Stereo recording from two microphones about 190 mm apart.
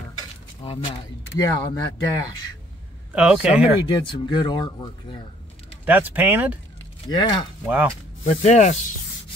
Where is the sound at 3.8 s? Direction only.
25° left (ahead or behind).